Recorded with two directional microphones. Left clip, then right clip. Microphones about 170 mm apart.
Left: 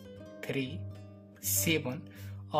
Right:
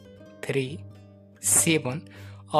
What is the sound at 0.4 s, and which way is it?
Speech, 40° right (ahead or behind).